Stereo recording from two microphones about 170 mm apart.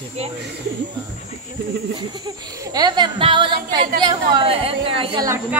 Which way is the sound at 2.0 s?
25° right (ahead or behind).